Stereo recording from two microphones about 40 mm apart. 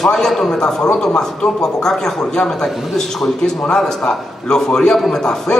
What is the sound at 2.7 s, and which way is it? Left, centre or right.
Speech, centre.